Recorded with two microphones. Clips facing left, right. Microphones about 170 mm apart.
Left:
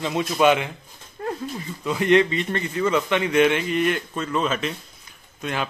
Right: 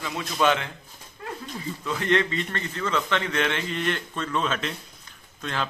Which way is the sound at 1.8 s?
15° left (ahead or behind).